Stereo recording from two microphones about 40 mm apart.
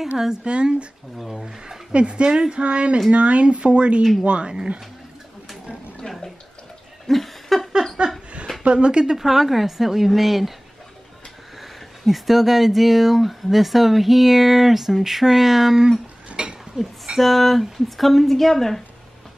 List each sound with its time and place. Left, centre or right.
0.2 s speech: centre
1.1 s speech: centre
1.4 s speech: right
6.0 s a sound: left
7.1 s a sound: centre
8.7 s a woman's voice: right; by 10.5 s centre
12.1 s speech: centre
16.3 s a sound: right
16.7 s speech: centre